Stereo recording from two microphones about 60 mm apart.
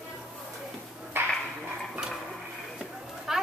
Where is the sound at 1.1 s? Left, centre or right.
Right.